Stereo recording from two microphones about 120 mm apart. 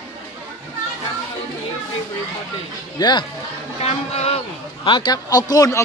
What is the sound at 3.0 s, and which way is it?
Speech, 35° left (ahead or behind).